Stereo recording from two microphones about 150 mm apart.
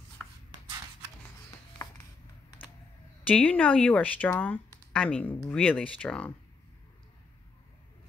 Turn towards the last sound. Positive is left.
turn(degrees=5)  # may be behind; listen again after turning